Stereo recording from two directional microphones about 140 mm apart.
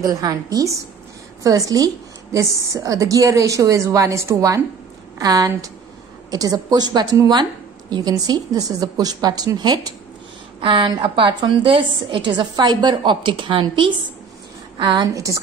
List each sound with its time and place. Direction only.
0.0 s a woman's voice: 25° right (ahead or behind)